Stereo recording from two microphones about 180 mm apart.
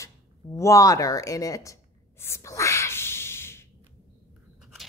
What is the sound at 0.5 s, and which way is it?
Writing, 15° left (ahead or behind).